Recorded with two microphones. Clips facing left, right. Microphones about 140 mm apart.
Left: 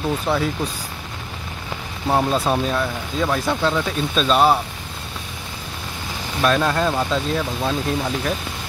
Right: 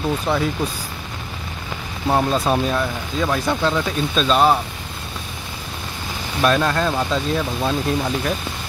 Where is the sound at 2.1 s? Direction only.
5° left (ahead or behind).